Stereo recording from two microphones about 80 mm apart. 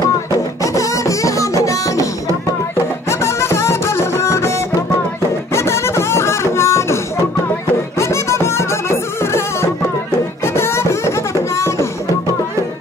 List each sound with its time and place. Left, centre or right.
0.6 s music: left
3.1 s music: left
5.5 s a sound: left
8.0 s music: left